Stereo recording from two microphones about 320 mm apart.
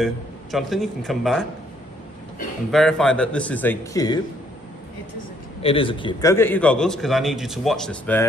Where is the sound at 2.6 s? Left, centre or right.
Centre.